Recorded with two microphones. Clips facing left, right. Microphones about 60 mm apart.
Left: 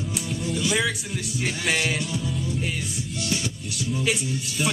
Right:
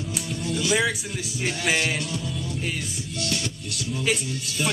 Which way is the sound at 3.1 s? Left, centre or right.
Left.